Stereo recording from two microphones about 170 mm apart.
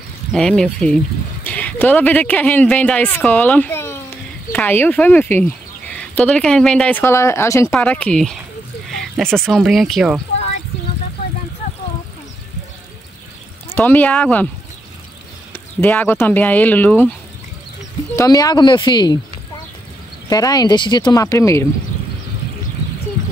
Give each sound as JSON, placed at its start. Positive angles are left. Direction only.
{"t": 0.3, "sound": "speech", "side_deg": 5}
{"t": 13.7, "sound": "speech", "side_deg": 10}
{"t": 15.5, "sound": "speech", "side_deg": 10}
{"t": 18.1, "sound": "speech", "side_deg": 20}
{"t": 20.2, "sound": "speech", "side_deg": 20}